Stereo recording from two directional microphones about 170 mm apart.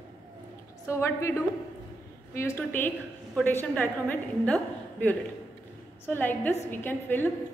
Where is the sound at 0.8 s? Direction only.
15° left (ahead or behind).